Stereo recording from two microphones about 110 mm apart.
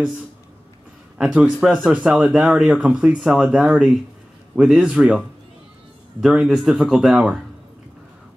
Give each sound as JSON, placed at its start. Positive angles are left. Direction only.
{"t": 1.1, "sound": "speech", "side_deg": -10}
{"t": 6.2, "sound": "speech", "side_deg": -5}